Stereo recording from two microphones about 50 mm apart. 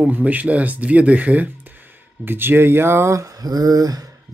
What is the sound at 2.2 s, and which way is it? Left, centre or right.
Speech, right.